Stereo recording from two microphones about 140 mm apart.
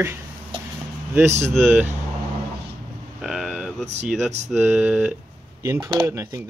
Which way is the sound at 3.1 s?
5° right (ahead or behind).